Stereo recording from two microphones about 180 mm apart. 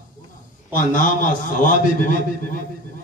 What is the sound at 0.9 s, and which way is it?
A man's voice, 45° left (ahead or behind).